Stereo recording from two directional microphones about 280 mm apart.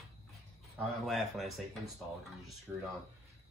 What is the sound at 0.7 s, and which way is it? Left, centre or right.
A man's voice, centre.